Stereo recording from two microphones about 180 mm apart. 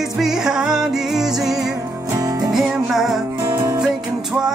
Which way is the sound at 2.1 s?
20° right (ahead or behind).